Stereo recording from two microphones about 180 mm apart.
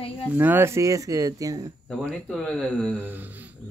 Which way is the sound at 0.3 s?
10° right (ahead or behind).